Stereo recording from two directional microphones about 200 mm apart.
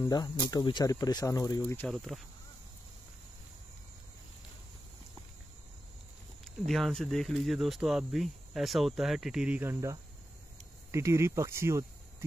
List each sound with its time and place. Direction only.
0.0 s speech: 20° left (ahead or behind)
1.9 s speech: centre (ahead or behind)
6.4 s speech: centre (ahead or behind); by 12.3 s 15° right (ahead or behind)